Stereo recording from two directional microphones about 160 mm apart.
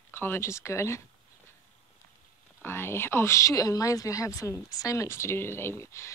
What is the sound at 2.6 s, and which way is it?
Speech, 15° left (ahead or behind).